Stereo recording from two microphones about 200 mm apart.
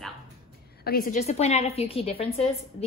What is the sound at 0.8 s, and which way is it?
A woman's voice, 45° left (ahead or behind).